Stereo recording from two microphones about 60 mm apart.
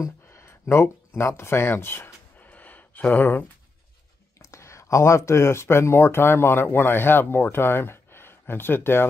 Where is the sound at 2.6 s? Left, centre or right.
Left.